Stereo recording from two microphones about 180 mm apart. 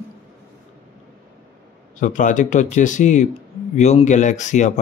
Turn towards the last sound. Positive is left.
turn(degrees=40)  # may be behind; listen again after turning